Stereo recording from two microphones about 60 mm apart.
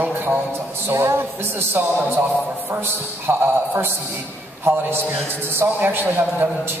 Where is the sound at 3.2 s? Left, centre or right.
Right.